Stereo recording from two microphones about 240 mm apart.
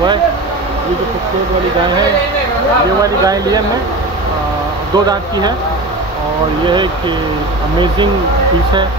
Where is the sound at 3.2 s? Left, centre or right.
Centre.